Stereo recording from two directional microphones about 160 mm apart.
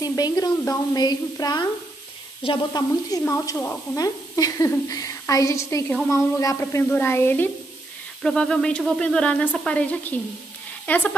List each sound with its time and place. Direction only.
0.0 s a woman's voice: 25° left (ahead or behind)
8.2 s a sound: 5° left (ahead or behind)
9.7 s a woman's voice: 10° left (ahead or behind)